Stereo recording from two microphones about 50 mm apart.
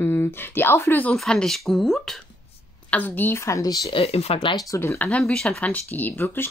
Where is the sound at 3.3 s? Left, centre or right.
Left.